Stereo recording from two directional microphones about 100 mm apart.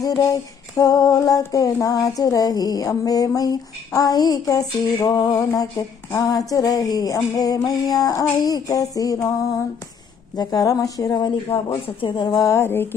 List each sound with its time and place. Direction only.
0.3 s female singing: 35° left (ahead or behind)
10.3 s female singing: 40° left (ahead or behind)
11.1 s speech: 50° left (ahead or behind)
12.4 s a sound: 25° left (ahead or behind)